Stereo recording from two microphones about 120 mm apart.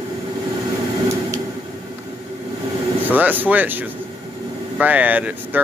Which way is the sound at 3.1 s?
15° right (ahead or behind).